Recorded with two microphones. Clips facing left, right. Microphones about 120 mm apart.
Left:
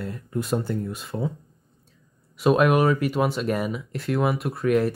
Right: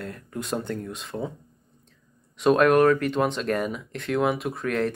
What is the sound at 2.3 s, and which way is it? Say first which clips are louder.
Speech: right 1 dB; 5° left (ahead or behind).